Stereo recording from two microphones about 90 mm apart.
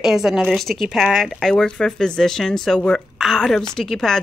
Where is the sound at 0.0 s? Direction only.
5° right (ahead or behind).